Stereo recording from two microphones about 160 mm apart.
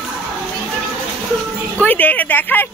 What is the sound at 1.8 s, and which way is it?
Speech, 10° left (ahead or behind).